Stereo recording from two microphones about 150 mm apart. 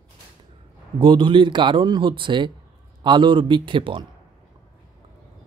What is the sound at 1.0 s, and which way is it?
Speech, 35° right (ahead or behind).